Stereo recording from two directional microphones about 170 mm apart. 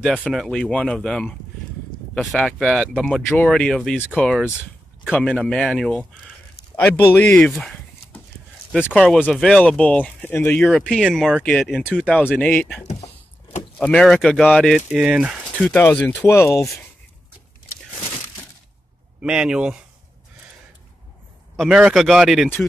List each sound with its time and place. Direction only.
0.0 s speech: centre (ahead or behind)
12.2 s speech: 10° left (ahead or behind)
12.8 s a sound: 40° left (ahead or behind)
13.7 s speech: 5° left (ahead or behind)
15.7 s speech: 10° left (ahead or behind)
19.2 s speech: 5° right (ahead or behind)
21.5 s speech: 5° right (ahead or behind)